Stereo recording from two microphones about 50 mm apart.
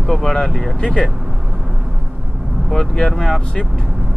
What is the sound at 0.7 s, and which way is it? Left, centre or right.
Speech, centre.